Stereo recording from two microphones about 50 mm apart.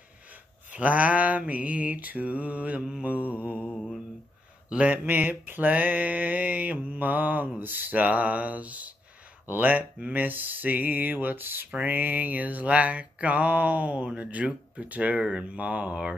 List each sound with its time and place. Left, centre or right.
0.7 s speech: right
3.0 s mantra: right
4.6 s speech: right
5.0 s mantra: right
14.0 s speech: right